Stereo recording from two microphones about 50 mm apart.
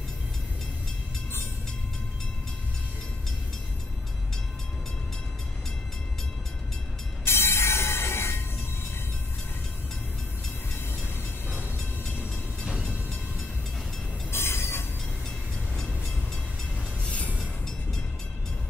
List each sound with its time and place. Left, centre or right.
7.2 s train: left
12.7 s vehicle: right
14.3 s train: left
16.7 s train: left